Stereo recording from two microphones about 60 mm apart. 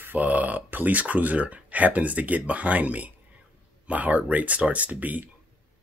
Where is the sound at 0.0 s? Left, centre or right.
Right.